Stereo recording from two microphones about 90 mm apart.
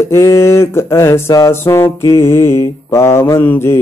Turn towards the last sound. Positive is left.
turn(degrees=25)  # may be behind; listen again after turning